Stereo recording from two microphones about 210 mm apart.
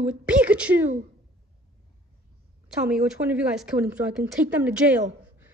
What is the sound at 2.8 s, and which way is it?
A woman's voice, 5° right (ahead or behind).